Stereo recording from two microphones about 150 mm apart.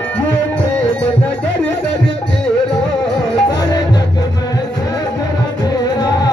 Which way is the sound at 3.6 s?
25° left (ahead or behind).